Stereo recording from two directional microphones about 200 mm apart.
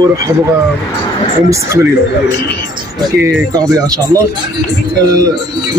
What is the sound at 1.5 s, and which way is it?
Speech, 15° right (ahead or behind).